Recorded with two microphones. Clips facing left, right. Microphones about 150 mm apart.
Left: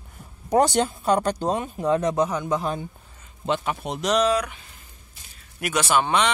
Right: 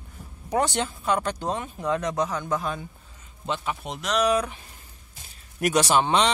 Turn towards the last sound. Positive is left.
turn(degrees=-25)  # may be behind; listen again after turning